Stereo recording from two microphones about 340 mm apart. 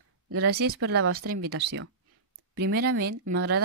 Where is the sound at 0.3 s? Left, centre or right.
Right.